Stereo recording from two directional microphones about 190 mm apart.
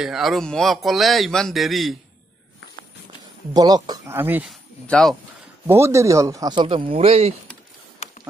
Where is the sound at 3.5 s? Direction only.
20° right (ahead or behind).